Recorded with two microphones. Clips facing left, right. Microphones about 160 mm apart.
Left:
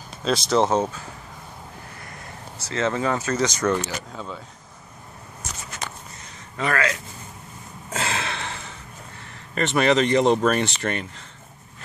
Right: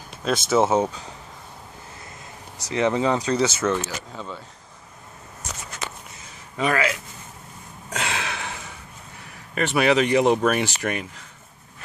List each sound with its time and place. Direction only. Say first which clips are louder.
0.2 s speech: even; 5° right (ahead or behind)
2.6 s speech: right 3 dB; 15° right (ahead or behind)
4.1 s speech: even; centre (ahead or behind)
6.5 s speech: right 1 dB; 15° right (ahead or behind)
7.9 s a sound: left 1 dB; centre (ahead or behind)
9.2 s speech: even; 5° right (ahead or behind)